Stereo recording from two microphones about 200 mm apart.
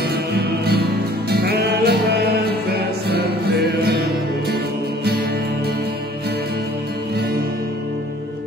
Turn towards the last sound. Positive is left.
turn(degrees=-50)  # may be behind; listen again after turning